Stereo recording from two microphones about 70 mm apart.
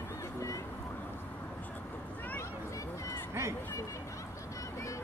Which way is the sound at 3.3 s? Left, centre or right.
Right.